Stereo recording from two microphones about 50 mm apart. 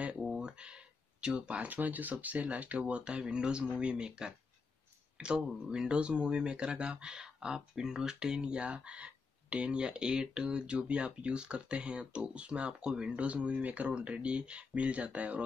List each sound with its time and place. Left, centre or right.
0.4 s speech: centre